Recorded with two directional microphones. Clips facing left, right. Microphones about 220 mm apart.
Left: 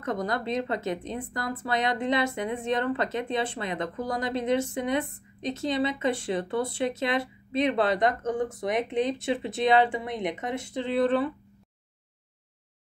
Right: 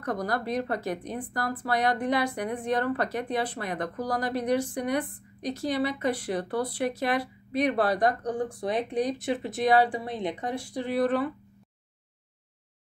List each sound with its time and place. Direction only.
0.0 s speech: 20° left (ahead or behind)